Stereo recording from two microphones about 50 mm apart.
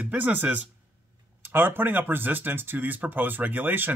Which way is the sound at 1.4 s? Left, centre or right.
Right.